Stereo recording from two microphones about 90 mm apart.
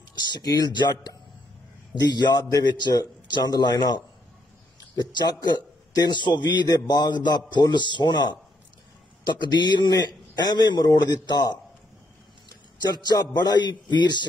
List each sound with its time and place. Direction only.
0.1 s a man's voice: 55° left (ahead or behind)
12.9 s a man's voice: 50° left (ahead or behind)